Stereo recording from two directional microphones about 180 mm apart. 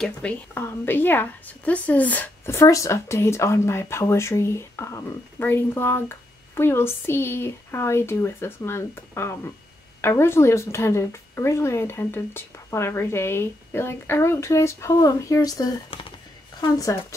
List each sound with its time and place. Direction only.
0.0 s a woman's voice: 5° left (ahead or behind)